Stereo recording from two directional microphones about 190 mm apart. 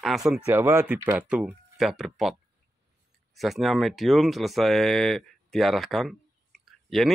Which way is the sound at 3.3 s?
Centre (ahead or behind).